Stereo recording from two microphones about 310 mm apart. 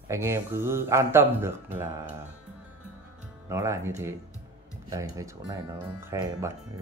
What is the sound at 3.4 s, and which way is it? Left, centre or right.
Speech, centre.